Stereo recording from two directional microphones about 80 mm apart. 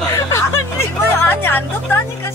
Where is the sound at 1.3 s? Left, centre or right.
Left.